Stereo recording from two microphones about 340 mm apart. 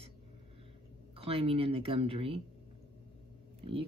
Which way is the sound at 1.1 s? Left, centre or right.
Centre.